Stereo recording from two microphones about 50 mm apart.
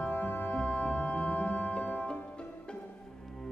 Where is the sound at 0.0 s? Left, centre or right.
Left.